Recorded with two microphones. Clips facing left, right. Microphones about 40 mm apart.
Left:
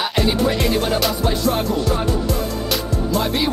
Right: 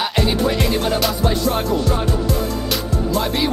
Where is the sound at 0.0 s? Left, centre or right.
Centre.